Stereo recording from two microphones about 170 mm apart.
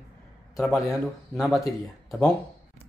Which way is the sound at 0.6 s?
Centre (ahead or behind).